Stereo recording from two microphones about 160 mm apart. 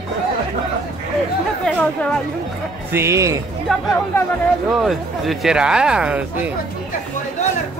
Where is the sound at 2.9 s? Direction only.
15° right (ahead or behind).